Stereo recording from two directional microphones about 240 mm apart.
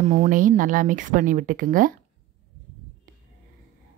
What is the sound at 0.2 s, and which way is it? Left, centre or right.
Speech, right.